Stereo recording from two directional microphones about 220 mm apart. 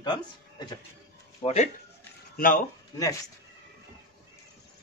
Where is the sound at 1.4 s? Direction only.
30° left (ahead or behind).